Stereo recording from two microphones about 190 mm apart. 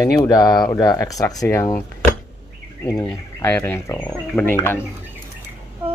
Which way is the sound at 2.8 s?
20° left (ahead or behind).